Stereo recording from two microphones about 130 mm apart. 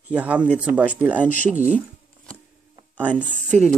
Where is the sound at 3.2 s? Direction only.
60° right (ahead or behind).